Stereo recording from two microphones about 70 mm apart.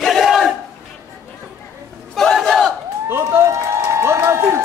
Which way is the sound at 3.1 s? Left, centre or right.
Right.